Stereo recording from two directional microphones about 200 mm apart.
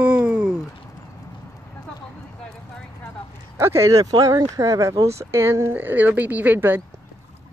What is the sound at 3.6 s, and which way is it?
Speech, 15° right (ahead or behind).